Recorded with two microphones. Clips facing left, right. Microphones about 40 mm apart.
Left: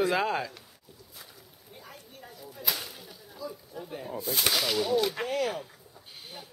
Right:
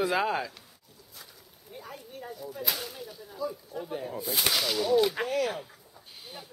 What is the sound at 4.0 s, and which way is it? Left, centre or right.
Speech, centre.